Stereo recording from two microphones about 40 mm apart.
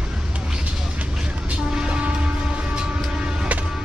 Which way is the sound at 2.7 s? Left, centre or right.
Right.